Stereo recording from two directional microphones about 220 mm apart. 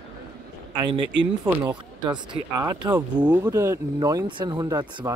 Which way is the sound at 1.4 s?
10° right (ahead or behind).